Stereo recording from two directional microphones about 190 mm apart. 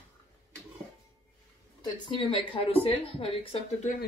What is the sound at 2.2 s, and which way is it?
Speech, 30° left (ahead or behind).